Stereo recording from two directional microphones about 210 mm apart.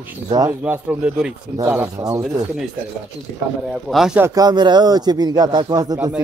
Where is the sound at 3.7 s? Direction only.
Centre (ahead or behind).